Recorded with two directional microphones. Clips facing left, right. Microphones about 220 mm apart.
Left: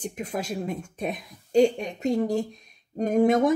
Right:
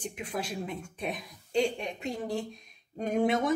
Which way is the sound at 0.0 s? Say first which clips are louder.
Left 4 dB; 45° left (ahead or behind).